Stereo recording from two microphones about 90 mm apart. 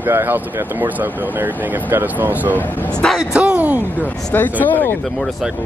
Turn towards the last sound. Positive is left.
turn(degrees=20)  # may be behind; listen again after turning